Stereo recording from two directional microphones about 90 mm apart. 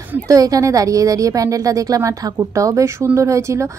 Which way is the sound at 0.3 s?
40° right (ahead or behind).